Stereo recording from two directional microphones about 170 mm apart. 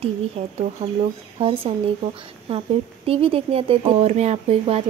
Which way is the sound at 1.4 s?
35° right (ahead or behind).